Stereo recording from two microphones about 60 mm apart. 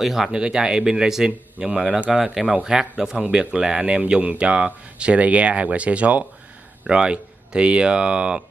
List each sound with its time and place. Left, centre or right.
0.0 s speech: centre
2.1 s speech: centre